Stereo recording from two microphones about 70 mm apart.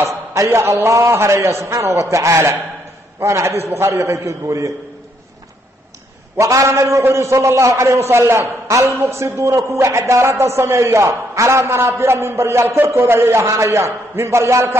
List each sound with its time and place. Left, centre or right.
0.0 s a man's voice: right
6.3 s a man's voice: right